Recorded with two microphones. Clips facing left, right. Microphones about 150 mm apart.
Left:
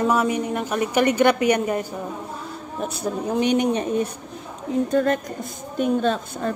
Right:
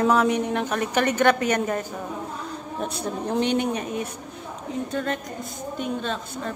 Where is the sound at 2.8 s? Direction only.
10° left (ahead or behind).